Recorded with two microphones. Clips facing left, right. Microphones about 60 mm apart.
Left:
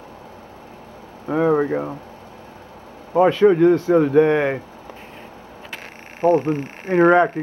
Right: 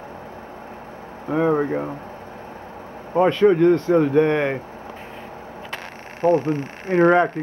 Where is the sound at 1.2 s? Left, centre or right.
Centre.